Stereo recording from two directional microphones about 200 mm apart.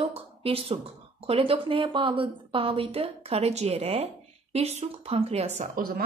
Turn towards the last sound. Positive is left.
turn(degrees=-45)  # may be behind; listen again after turning